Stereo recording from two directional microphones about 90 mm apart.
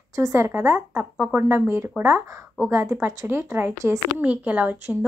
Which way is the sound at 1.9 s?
Centre (ahead or behind).